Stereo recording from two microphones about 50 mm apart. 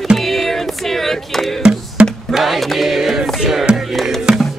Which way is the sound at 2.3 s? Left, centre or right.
Centre.